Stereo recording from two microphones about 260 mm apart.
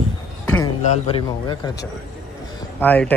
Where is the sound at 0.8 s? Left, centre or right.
Centre.